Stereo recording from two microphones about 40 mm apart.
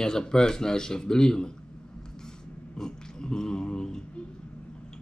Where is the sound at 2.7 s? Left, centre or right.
Centre.